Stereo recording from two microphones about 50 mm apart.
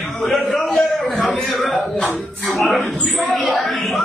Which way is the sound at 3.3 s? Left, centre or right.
Centre.